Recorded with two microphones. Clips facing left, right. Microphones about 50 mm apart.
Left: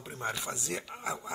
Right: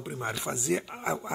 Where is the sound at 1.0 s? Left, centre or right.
Right.